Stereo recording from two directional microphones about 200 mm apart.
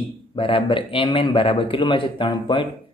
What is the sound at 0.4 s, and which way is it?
Speech, 25° left (ahead or behind).